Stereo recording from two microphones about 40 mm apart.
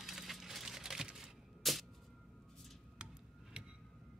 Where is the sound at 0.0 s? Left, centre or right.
Centre.